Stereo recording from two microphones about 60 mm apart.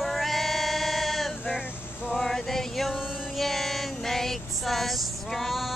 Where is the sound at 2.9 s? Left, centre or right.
Centre.